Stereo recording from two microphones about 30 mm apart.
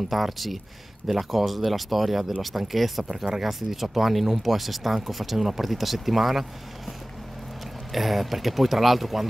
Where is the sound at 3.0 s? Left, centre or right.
Centre.